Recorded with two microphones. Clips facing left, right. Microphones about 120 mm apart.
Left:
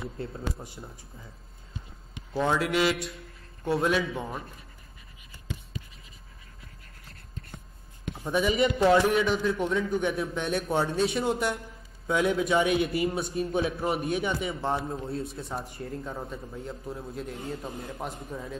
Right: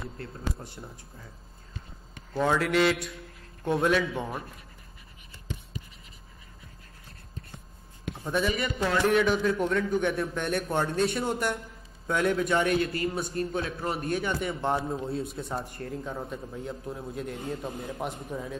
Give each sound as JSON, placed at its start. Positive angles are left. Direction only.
{"t": 0.6, "sound": "speech", "side_deg": 10}
{"t": 2.3, "sound": "speech", "side_deg": 0}
{"t": 8.3, "sound": "speech", "side_deg": 10}
{"t": 8.5, "sound": "speech", "side_deg": 25}
{"t": 9.0, "sound": "speech", "side_deg": 0}